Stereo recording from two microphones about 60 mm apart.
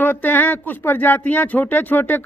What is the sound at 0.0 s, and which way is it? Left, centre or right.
A man's voice, left.